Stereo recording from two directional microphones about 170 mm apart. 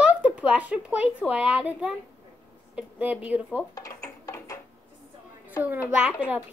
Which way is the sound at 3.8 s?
20° left (ahead or behind).